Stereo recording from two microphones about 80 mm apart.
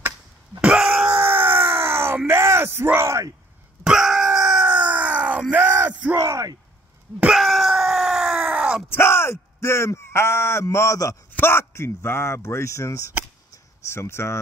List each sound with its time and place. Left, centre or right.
0.6 s wail: centre
1.3 s groan: right
2.2 s bellow: right
3.8 s dog: centre
4.6 s a sound: centre
6.1 s speech: right
7.3 s howl: centre
8.5 s groan: centre
8.8 s speech: left
11.3 s speech: left
13.5 s a sound: left